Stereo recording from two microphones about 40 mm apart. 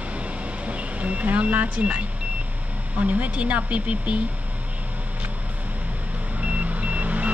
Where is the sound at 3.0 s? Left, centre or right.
Right.